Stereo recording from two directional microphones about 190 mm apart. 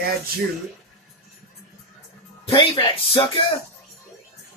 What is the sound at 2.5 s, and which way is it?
Speech, 30° left (ahead or behind).